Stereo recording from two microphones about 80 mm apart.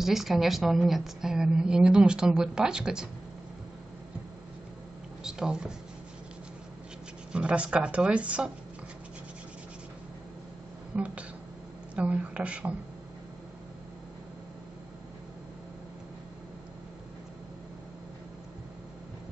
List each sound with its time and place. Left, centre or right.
0.0 s a woman's voice: centre
5.2 s speech: centre
7.3 s a woman's voice: centre
10.9 s speech: centre